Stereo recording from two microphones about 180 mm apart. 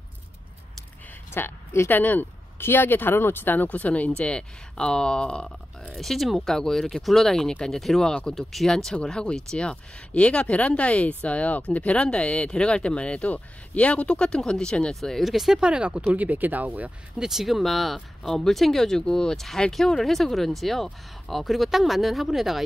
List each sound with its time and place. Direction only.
1.3 s speech: 15° left (ahead or behind)